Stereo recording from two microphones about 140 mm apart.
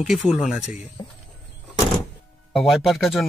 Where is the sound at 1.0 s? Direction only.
30° left (ahead or behind).